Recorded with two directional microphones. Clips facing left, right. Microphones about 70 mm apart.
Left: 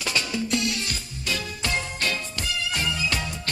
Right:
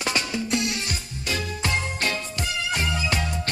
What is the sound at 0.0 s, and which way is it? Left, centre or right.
Music, right.